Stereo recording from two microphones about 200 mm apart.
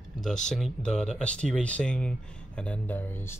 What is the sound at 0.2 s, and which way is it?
Speech, 5° left (ahead or behind).